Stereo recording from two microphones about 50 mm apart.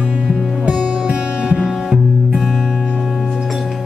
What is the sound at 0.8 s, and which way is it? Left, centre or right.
Music, centre.